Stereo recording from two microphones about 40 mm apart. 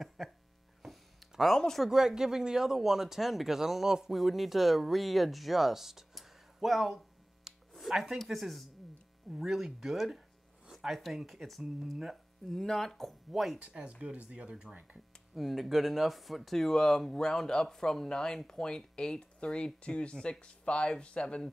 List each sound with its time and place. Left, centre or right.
0.2 s a sound: centre
0.8 s music: centre
1.5 s speech: centre
1.9 s speech: centre
7.5 s a sound: centre
7.9 s speech: centre
8.2 s speech: centre
14.0 s speech: right
15.3 s speech: centre; by 21.5 s left